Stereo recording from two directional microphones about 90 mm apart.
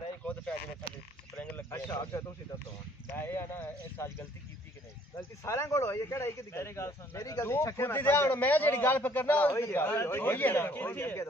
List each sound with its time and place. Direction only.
0.2 s a sound: 15° left (ahead or behind)
3.2 s speech: 25° left (ahead or behind)
5.1 s speech: 30° left (ahead or behind)